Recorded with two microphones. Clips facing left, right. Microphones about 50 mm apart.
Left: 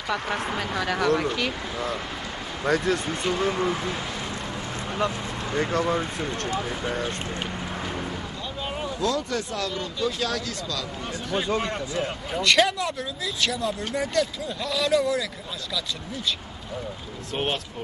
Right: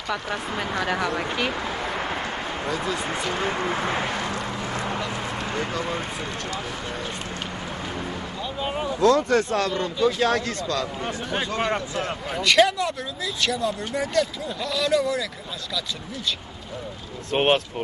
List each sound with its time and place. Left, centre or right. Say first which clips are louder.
0.6 s speech: right 4 dB; centre
1.8 s speech: right 2 dB; right
3.1 s a sound: left 1 dB; right
5.7 s speech: left 4 dB; left
8.5 s vehicle: right 4 dB; centre
9.0 s a man's voice: right 9 dB; right
12.3 s speech: right 2 dB; centre
17.3 s speech: right 8 dB; right